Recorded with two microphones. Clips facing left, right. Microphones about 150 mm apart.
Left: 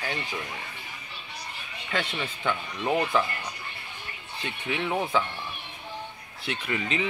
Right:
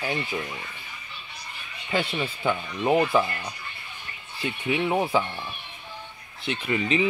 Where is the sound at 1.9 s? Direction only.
10° right (ahead or behind).